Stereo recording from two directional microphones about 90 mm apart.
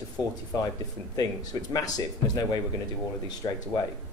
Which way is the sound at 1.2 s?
45° left (ahead or behind).